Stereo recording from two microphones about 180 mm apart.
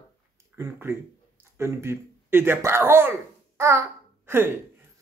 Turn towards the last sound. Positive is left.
turn(degrees=-15)  # may be behind; listen again after turning